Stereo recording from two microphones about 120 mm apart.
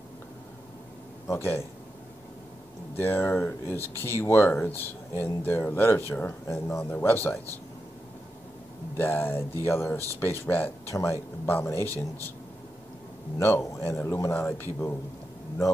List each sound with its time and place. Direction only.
1.2 s a man's voice: 20° left (ahead or behind)
3.0 s speech: 20° left (ahead or behind)
8.9 s speech: 20° left (ahead or behind)
13.4 s speech: 20° left (ahead or behind)